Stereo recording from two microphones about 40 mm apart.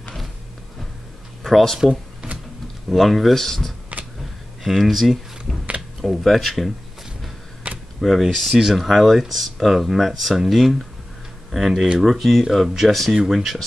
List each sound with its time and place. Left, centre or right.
1.4 s speech: centre
2.9 s speech: centre
4.6 s speech: centre
7.7 s camera: right
8.0 s speech: centre